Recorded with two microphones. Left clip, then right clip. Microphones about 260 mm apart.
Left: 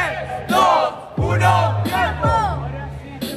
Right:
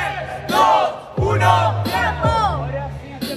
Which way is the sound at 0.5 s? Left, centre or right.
Right.